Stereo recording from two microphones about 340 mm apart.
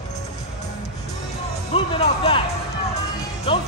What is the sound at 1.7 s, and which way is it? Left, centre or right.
Speech, centre.